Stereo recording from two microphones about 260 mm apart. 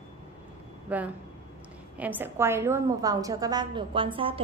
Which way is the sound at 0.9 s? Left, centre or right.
Centre.